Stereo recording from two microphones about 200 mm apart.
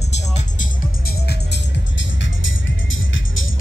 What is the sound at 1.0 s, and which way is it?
Music, 55° left (ahead or behind).